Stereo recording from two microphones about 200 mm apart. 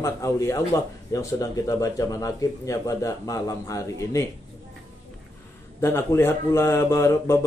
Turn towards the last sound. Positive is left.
turn(degrees=15)  # may be behind; listen again after turning